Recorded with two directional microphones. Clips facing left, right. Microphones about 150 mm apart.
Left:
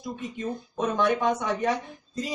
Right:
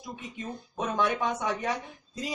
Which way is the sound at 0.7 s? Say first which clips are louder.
Left 3 dB; 5° right (ahead or behind).